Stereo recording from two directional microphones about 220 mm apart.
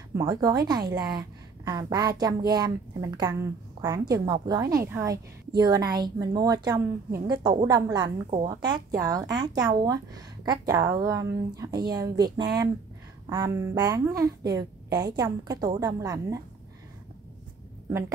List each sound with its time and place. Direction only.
0.1 s a woman's voice: 15° right (ahead or behind)